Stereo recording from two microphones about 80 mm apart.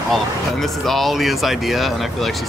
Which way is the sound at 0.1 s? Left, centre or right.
Centre.